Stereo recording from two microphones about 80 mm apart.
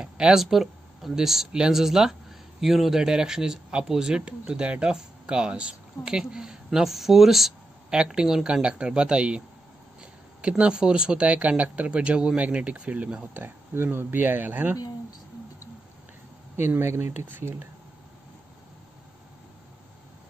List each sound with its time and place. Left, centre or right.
0.0 s speech: centre
10.6 s speech: centre
16.6 s speech: right